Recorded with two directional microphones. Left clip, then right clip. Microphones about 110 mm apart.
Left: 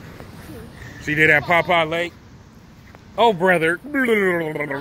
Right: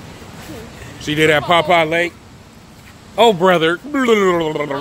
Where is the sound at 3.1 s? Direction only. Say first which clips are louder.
Right 5 dB; 50° right (ahead or behind).